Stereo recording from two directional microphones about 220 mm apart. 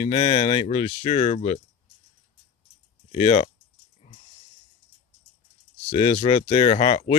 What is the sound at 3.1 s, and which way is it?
Speech, 25° left (ahead or behind).